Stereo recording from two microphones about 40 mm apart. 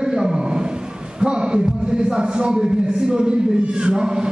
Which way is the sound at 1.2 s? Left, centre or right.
Right.